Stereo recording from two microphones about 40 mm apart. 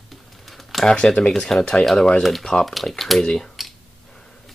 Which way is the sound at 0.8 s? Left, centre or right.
Left.